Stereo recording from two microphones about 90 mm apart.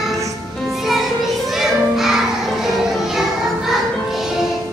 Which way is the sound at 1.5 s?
5° right (ahead or behind).